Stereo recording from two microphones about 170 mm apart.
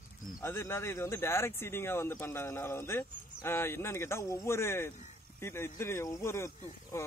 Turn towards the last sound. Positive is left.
turn(degrees=15)  # may be behind; listen again after turning